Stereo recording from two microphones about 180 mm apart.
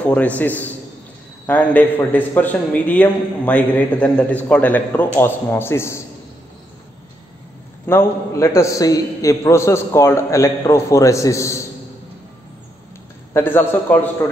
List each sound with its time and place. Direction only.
0.0 s a man's voice: 10° left (ahead or behind)
7.8 s a man's voice: 15° left (ahead or behind)
13.3 s a man's voice: 10° left (ahead or behind)